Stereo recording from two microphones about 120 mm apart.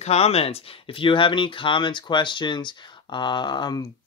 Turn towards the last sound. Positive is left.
turn(degrees=35)  # may be behind; listen again after turning